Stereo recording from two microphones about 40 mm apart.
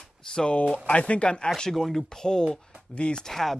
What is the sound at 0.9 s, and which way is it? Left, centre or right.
Speech, left.